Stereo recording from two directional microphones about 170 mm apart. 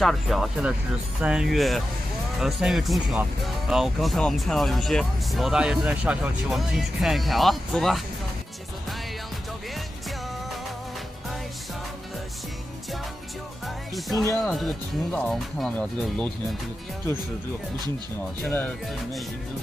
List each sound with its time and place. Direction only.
0.0 s speech: centre (ahead or behind)
14.1 s speech: 20° left (ahead or behind)
14.4 s speech: centre (ahead or behind)
18.4 s speech: 10° left (ahead or behind)